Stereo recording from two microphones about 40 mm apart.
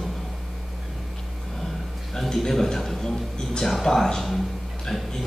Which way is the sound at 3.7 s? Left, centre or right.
Centre.